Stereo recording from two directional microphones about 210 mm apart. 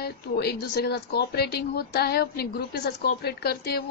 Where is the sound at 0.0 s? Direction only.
50° left (ahead or behind).